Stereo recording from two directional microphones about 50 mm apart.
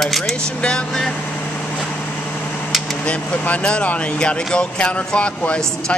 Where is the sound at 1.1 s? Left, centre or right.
Left.